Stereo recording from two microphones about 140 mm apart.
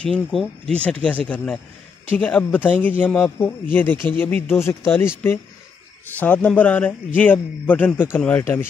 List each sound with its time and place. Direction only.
0.0 s a man's voice: 5° left (ahead or behind)
6.1 s a man's voice: 10° left (ahead or behind)